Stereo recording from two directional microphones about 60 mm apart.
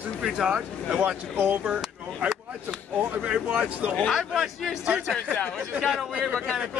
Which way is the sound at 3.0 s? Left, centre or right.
Right.